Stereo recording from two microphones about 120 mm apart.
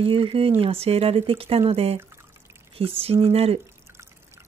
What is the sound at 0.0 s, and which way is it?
Speech, 50° right (ahead or behind).